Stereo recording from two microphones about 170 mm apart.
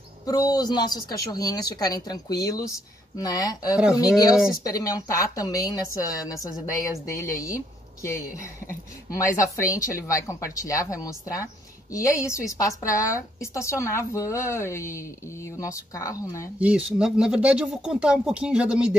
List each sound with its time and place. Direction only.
0.3 s a woman's voice: 20° left (ahead or behind)
9.2 s a woman's voice: 20° left (ahead or behind)
16.5 s speech: 5° right (ahead or behind)